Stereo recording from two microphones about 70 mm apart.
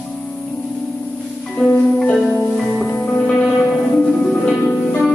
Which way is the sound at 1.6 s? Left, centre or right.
Centre.